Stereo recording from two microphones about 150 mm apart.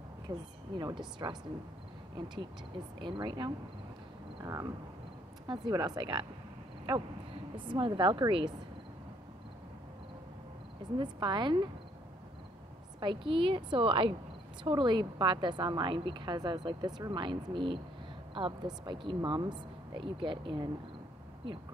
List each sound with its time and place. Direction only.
0.3 s a woman's voice: 30° right (ahead or behind)
4.4 s a sound: 25° right (ahead or behind)
5.5 s speech: 30° right (ahead or behind)
7.5 s a woman's voice: 35° right (ahead or behind)
11.0 s a woman's voice: 30° right (ahead or behind)
13.0 s a woman's voice: 35° right (ahead or behind)